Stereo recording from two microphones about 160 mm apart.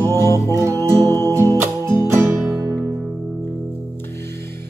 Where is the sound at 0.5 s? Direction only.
15° right (ahead or behind).